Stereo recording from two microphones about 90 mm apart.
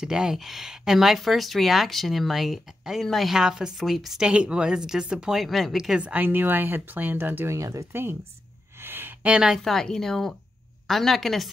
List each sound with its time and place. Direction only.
0.0 s speech: 5° right (ahead or behind); by 7.5 s 20° right (ahead or behind)
7.5 s speech: 35° right (ahead or behind)
8.8 s a sound: 25° right (ahead or behind)
9.3 s a woman's voice: 10° right (ahead or behind)
9.6 s speech: 5° left (ahead or behind)